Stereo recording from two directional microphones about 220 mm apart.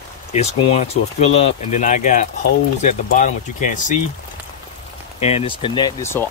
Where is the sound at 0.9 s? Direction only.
30° left (ahead or behind).